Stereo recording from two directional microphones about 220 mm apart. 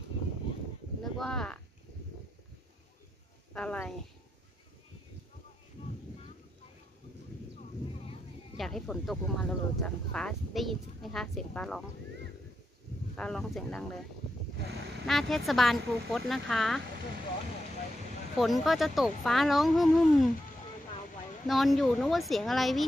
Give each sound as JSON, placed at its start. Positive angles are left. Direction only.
{"t": 1.1, "sound": "speech", "side_deg": 0}
{"t": 3.5, "sound": "speech", "side_deg": 5}
{"t": 8.5, "sound": "speech", "side_deg": 0}
{"t": 13.1, "sound": "speech", "side_deg": 5}
{"t": 15.0, "sound": "speech", "side_deg": 0}
{"t": 18.4, "sound": "speech", "side_deg": 0}
{"t": 21.5, "sound": "speech", "side_deg": 0}